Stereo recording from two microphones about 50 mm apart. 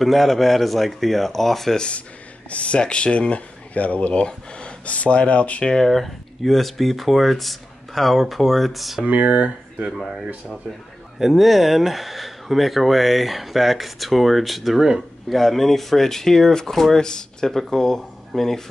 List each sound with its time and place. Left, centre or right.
0.0 s speech: centre
1.8 s speech: left
4.1 s speech: centre
5.7 s speech: centre
9.0 s speech: right
9.8 s speech: centre
11.1 s speech: centre